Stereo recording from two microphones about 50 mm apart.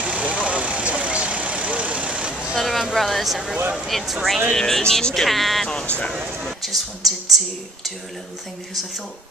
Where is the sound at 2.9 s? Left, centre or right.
Centre.